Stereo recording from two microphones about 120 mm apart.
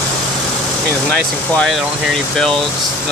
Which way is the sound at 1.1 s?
10° left (ahead or behind).